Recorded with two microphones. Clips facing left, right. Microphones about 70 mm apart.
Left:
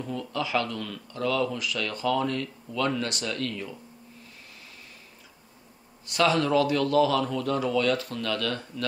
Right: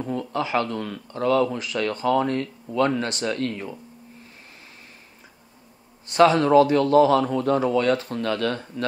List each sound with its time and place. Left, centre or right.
0.0 s speech: right
6.0 s speech: right